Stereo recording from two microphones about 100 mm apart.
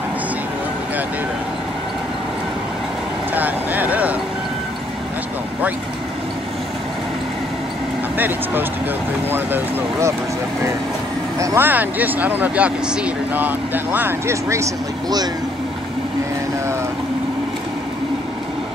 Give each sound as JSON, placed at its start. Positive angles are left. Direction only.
{"t": 3.3, "sound": "vehicle", "side_deg": -15}
{"t": 9.3, "sound": "speech", "side_deg": -20}
{"t": 11.3, "sound": "speech", "side_deg": -20}